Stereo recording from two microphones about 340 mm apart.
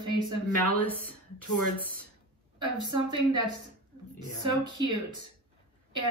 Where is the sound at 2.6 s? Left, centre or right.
Right.